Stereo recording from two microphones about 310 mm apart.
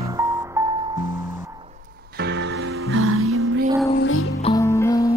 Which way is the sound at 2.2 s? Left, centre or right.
Right.